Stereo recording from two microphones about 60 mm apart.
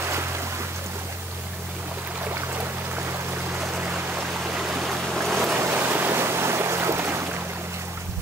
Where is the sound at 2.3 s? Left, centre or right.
Right.